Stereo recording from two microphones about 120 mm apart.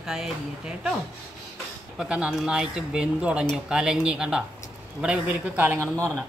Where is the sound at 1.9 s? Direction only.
5° right (ahead or behind).